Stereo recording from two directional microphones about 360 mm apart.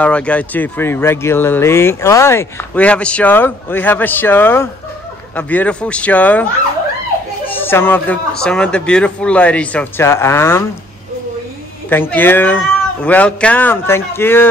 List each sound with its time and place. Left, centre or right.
0.0 s speech: centre
7.4 s speech: centre
11.9 s speech: centre